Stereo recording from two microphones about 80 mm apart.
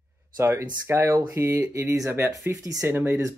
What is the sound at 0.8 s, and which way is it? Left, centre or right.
Speech, right.